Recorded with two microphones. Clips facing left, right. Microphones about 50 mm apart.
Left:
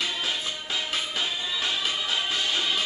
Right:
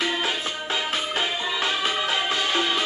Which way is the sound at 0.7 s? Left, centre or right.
Right.